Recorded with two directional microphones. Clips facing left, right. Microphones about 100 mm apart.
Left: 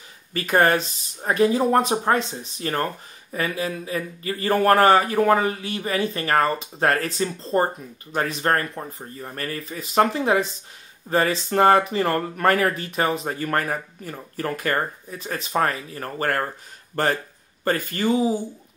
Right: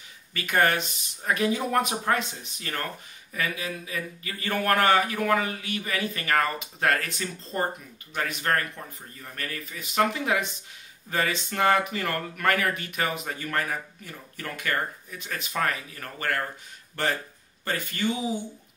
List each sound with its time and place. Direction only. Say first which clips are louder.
0.3 s speech: left 5 dB; 35° left (ahead or behind)